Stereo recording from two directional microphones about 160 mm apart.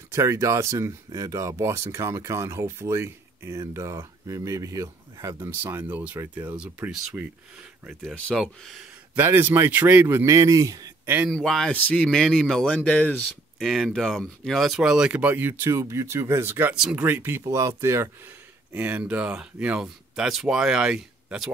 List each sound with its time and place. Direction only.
0.1 s speech: 20° right (ahead or behind)
7.8 s speech: 5° left (ahead or behind)
9.1 s speech: 15° right (ahead or behind)
11.2 s speech: centre (ahead or behind)